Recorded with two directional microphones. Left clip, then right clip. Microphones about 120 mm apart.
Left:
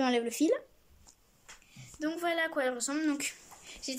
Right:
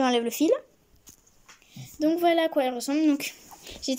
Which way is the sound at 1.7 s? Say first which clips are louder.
Right 10 dB; 40° right (ahead or behind).